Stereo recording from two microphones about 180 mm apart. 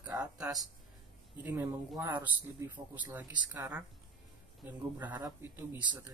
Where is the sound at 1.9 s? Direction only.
20° right (ahead or behind).